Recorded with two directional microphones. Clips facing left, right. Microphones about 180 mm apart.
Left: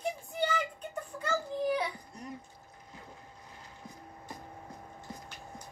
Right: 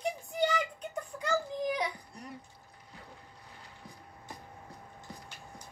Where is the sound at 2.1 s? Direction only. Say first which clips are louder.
Left 2 dB; 45° left (ahead or behind).